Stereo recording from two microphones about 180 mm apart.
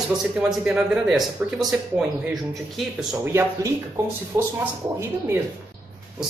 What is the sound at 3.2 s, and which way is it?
Speech, 15° right (ahead or behind).